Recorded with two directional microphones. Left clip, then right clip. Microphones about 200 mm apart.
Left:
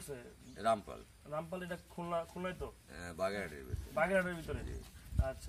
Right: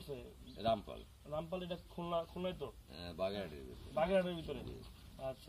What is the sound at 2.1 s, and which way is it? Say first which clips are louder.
A man's voice: left 1 dB; 5° left (ahead or behind).